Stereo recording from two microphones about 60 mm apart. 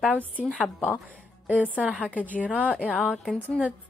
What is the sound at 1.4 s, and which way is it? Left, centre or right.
A woman's voice, right.